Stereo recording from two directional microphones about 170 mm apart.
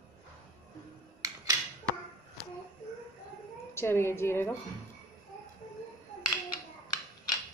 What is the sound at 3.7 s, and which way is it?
Speech, 15° left (ahead or behind).